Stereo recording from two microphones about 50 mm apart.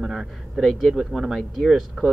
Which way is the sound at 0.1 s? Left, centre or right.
Centre.